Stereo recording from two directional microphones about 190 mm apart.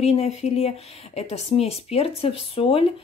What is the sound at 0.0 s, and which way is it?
Speech, 35° left (ahead or behind).